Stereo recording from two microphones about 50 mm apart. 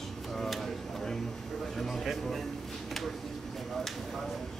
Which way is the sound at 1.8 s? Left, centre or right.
Centre.